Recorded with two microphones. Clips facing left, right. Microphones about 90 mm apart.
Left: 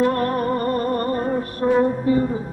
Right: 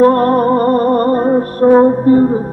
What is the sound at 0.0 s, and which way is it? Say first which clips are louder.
Music: right 10 dB; 40° right (ahead or behind).